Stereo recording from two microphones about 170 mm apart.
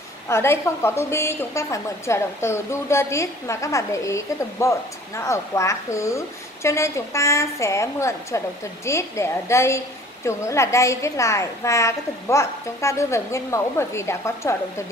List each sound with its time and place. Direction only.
0.3 s a woman's voice: 15° left (ahead or behind)